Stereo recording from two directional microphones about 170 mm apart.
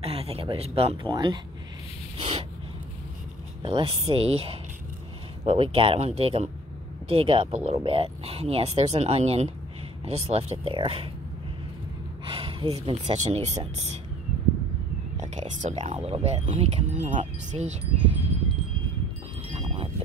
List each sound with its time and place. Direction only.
0.0 s speech: 35° right (ahead or behind)
3.6 s speech: 30° right (ahead or behind)
12.3 s speech: 30° right (ahead or behind)
15.3 s speech: 45° right (ahead or behind)
19.5 s wind chime: 35° right (ahead or behind)